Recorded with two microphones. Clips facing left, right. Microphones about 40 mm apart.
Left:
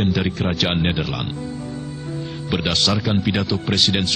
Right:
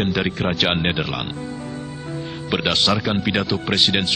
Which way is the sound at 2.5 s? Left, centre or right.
Centre.